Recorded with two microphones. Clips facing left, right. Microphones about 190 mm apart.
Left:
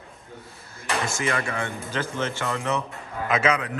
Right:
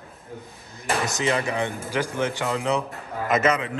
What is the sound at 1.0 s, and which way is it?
Speech, 20° right (ahead or behind).